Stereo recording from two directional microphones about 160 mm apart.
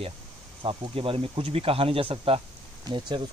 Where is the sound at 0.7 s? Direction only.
35° right (ahead or behind).